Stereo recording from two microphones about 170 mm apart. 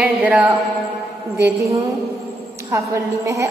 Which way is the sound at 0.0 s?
10° right (ahead or behind).